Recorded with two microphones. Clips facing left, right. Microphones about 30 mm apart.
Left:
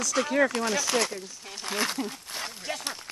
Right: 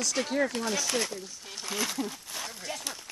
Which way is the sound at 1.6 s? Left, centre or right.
Left.